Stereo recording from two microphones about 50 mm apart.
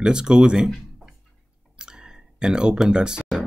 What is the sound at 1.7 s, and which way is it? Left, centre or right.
Clicking, centre.